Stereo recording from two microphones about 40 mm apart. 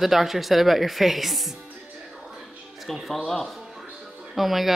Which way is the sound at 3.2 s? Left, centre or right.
Centre.